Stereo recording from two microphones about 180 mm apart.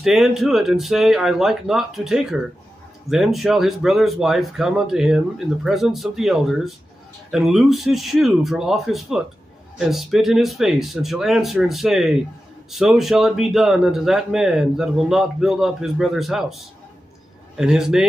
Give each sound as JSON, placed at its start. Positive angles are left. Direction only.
{"t": 0.0, "sound": "speech", "side_deg": 0}
{"t": 17.6, "sound": "speech", "side_deg": -5}